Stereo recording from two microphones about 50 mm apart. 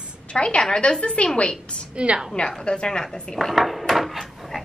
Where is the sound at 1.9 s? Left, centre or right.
Right.